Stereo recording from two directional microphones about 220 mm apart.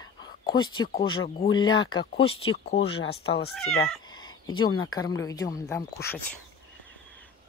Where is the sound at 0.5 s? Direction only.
20° left (ahead or behind).